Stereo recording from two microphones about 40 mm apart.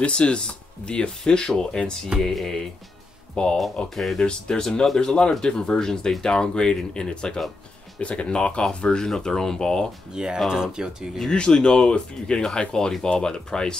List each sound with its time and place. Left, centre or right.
0.0 s speech: left
2.1 s speech: right
3.4 s speech: left
3.9 s speech: centre
4.2 s speech: centre
10.1 s speech: centre
11.2 s speech: centre